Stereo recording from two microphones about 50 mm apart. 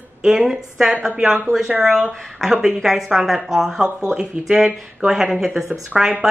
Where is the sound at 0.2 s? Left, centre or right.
Centre.